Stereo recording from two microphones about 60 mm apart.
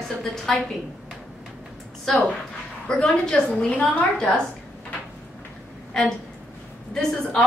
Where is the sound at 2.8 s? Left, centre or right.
Centre.